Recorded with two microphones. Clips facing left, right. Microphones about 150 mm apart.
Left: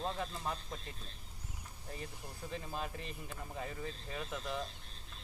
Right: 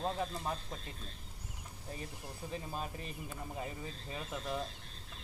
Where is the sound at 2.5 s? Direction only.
5° right (ahead or behind).